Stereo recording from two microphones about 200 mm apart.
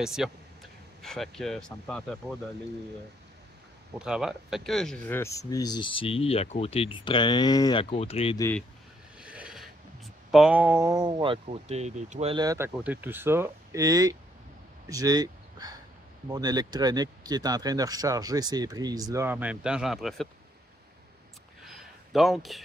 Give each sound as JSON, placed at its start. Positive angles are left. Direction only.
{"t": 0.0, "sound": "speech", "side_deg": 0}
{"t": 4.0, "sound": "speech", "side_deg": -5}
{"t": 8.4, "sound": "speech", "side_deg": 10}
{"t": 9.2, "sound": "filing", "side_deg": -5}
{"t": 10.3, "sound": "speech", "side_deg": -5}
{"t": 11.4, "sound": "speech", "side_deg": -35}
{"t": 21.6, "sound": "a sound", "side_deg": 0}